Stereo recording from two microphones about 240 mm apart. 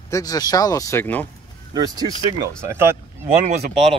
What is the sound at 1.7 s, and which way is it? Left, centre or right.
Speech, centre.